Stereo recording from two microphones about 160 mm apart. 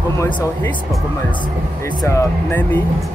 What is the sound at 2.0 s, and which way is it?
Speech, 15° left (ahead or behind).